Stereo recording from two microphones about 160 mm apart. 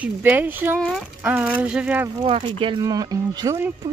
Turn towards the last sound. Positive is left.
turn(degrees=-25)  # may be behind; listen again after turning